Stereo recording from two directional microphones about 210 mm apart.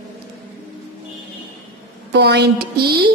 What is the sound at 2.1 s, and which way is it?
Speech, 50° right (ahead or behind).